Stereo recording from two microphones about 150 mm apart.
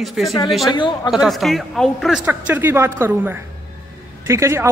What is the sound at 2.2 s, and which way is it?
A woman's voice, 10° right (ahead or behind).